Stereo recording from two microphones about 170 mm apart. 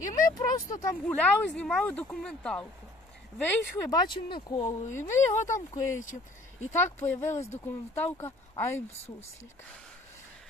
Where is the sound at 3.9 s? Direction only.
30° left (ahead or behind).